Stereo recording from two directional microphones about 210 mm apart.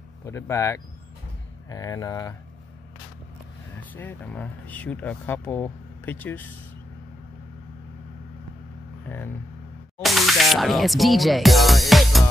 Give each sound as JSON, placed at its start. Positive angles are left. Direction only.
{"t": 0.2, "sound": "speech", "side_deg": 15}
{"t": 3.9, "sound": "speech", "side_deg": 10}
{"t": 10.0, "sound": "speech", "side_deg": 0}